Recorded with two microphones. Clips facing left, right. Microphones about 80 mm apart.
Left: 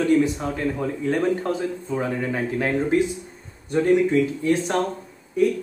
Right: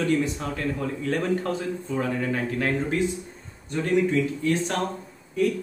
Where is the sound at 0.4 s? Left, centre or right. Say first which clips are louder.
Left 3 dB; centre.